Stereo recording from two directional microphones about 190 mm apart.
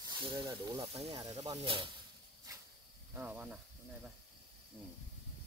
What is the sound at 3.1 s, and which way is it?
Speech, 10° right (ahead or behind).